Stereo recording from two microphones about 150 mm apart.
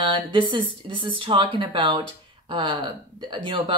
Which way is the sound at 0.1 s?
35° right (ahead or behind).